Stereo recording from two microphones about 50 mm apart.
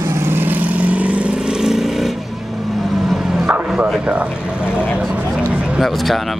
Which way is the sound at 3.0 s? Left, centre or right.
Centre.